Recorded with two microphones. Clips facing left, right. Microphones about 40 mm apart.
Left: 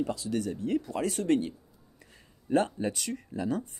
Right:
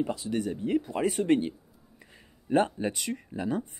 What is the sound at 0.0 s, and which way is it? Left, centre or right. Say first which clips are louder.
A man's voice: right 1 dB; right.